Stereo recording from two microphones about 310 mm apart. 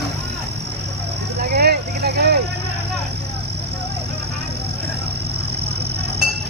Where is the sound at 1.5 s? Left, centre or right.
Right.